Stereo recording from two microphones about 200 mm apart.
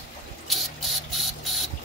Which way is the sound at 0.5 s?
Centre (ahead or behind).